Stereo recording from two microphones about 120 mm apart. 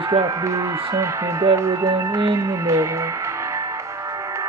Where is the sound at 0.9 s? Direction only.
25° right (ahead or behind).